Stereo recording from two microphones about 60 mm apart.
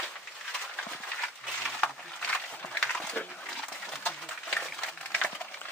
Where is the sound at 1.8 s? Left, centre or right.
Centre.